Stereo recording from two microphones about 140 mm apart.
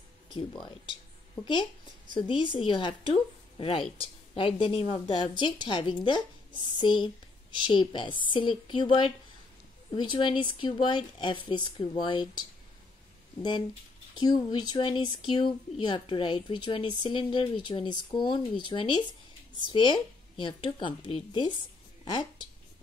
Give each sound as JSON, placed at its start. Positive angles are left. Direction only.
{"t": 0.3, "sound": "a woman's voice", "side_deg": 35}
{"t": 6.5, "sound": "a sound", "side_deg": -35}
{"t": 6.8, "sound": "a woman's voice", "side_deg": 35}